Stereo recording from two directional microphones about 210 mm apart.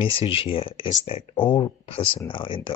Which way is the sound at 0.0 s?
25° left (ahead or behind).